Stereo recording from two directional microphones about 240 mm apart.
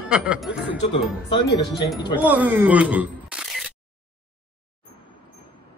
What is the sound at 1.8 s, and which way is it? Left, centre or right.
Speech, centre.